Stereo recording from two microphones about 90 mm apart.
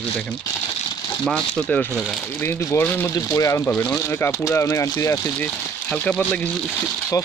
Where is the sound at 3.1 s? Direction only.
40° left (ahead or behind).